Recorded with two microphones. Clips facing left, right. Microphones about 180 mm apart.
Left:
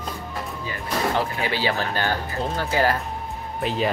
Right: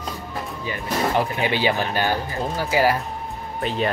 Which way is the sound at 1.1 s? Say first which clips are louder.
Right 3 dB; 20° right (ahead or behind).